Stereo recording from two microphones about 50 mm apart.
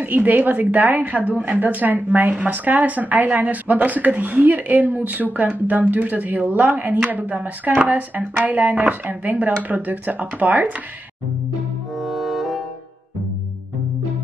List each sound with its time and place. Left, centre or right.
0.0 s a woman's voice: right
12.0 s music: centre